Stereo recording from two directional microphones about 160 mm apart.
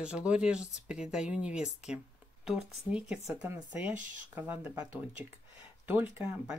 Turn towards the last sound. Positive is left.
turn(degrees=-15)  # may be behind; listen again after turning